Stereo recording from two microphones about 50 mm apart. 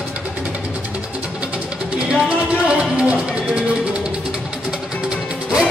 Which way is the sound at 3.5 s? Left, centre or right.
Centre.